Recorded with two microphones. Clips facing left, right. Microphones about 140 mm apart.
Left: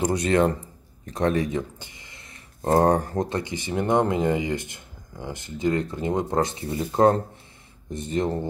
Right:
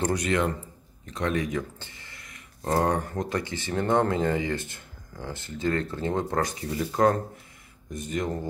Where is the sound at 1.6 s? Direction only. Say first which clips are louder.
Left 2 dB; 15° left (ahead or behind).